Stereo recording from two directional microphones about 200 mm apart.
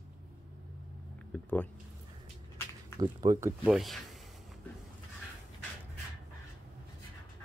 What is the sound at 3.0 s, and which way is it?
Speech, 20° right (ahead or behind).